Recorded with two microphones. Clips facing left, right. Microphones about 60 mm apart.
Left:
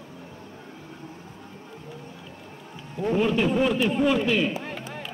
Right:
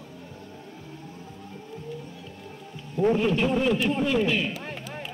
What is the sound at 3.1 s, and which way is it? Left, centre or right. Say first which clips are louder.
A man's voice: left 1 dB; centre.